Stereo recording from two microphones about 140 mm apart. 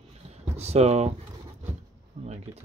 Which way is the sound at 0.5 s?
50° right (ahead or behind).